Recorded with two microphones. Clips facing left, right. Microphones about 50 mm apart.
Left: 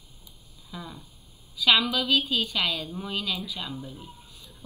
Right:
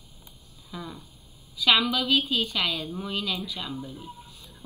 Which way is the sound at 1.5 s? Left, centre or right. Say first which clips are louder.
Even; centre.